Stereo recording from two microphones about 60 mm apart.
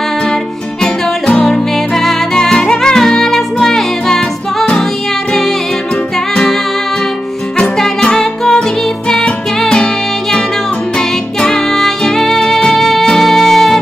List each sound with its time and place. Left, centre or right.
1.2 s music: centre
7.5 s music: centre
11.0 s music: centre